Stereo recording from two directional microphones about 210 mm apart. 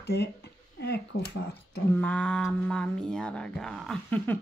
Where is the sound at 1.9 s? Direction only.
5° left (ahead or behind).